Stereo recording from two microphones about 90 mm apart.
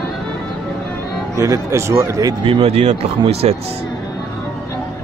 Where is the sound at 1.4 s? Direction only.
35° right (ahead or behind).